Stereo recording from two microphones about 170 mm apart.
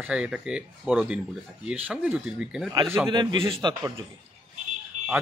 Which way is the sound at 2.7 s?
20° right (ahead or behind).